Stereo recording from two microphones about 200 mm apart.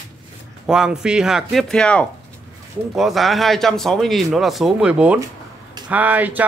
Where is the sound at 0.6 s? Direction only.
5° right (ahead or behind).